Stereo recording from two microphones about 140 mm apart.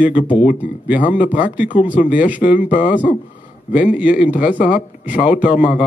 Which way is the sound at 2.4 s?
75° left (ahead or behind).